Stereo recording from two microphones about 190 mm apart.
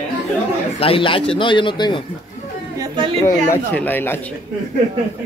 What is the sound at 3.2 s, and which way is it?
Speech, 10° left (ahead or behind).